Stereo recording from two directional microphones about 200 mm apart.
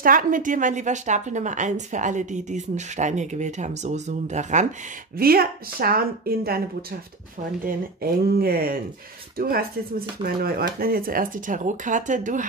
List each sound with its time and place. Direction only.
0.0 s a woman's voice: 45° right (ahead or behind)
5.1 s speech: 50° right (ahead or behind)
7.6 s speech: 50° right (ahead or behind)